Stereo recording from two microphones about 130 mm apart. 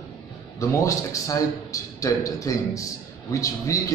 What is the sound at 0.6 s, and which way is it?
A man's voice, 25° left (ahead or behind).